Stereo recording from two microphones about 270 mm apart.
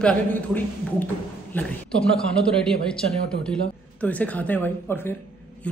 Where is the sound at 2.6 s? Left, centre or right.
Centre.